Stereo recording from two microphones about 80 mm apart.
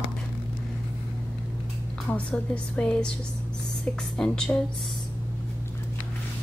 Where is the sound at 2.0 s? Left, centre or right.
Centre.